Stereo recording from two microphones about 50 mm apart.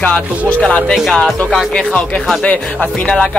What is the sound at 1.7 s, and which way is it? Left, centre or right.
Speech, centre.